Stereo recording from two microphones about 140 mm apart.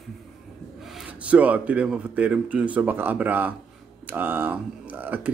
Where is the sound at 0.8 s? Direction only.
5° right (ahead or behind).